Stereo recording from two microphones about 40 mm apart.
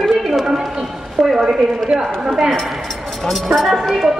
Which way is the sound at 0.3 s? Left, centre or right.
Centre.